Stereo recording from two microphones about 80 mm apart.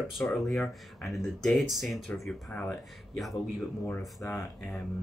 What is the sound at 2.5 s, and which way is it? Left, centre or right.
Speech, centre.